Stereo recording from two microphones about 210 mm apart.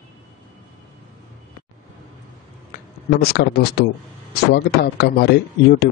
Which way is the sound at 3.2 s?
50° left (ahead or behind).